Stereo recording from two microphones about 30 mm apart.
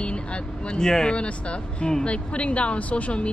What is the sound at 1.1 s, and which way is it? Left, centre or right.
Speech, left.